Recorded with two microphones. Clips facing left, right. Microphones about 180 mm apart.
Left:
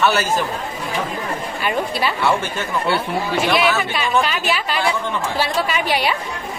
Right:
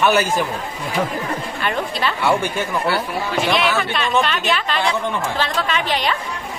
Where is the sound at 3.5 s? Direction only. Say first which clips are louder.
Left 1 dB; 5° left (ahead or behind).